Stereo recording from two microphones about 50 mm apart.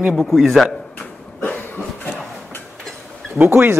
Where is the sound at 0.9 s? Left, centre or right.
Left.